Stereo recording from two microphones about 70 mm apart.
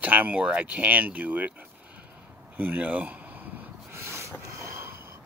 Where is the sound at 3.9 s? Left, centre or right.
Right.